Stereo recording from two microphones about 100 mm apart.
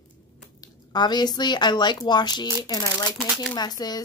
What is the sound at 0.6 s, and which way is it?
A woman's voice, 45° left (ahead or behind).